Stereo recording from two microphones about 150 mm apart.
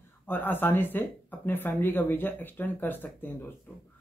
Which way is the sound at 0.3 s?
15° left (ahead or behind).